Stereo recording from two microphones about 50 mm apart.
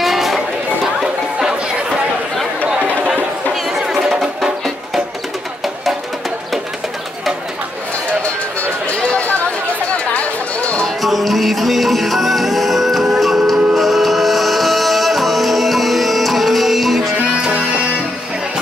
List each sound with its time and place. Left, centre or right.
0.0 s chatter: centre
1.0 s chatter: centre
3.6 s music: centre
8.5 s run: left
9.9 s chatter: left
11.0 s music: centre
17.5 s music: centre